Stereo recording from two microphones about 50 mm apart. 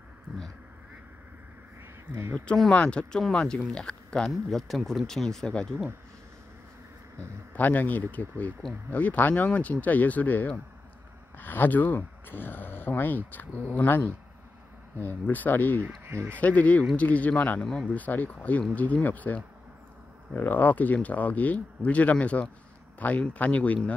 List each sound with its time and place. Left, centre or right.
2.1 s speech: right
2.7 s speech: left
4.3 s speech: centre
7.5 s speech: left
16.1 s speech: right
16.3 s speech: left
17.6 s speech: centre
17.9 s speech: left